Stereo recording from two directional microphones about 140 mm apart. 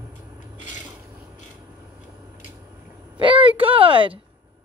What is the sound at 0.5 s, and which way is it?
Filing, 65° left (ahead or behind).